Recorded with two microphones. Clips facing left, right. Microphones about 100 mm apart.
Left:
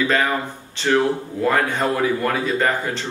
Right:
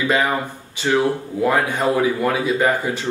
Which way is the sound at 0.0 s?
15° right (ahead or behind).